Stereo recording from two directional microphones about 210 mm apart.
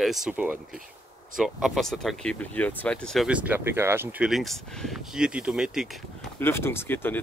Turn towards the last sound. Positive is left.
turn(degrees=10)  # may be behind; listen again after turning